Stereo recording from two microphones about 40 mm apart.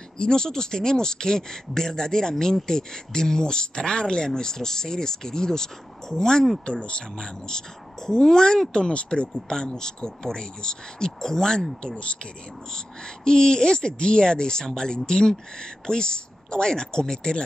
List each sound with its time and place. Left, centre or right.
0.2 s speech: centre
6.6 s speech: left
11.8 s speech: left